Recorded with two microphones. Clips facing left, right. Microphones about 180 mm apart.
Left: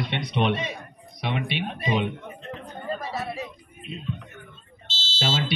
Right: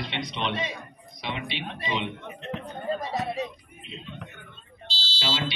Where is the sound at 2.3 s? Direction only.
70° right (ahead or behind).